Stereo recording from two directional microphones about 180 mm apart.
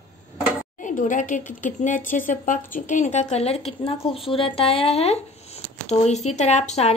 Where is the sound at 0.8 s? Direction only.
45° left (ahead or behind).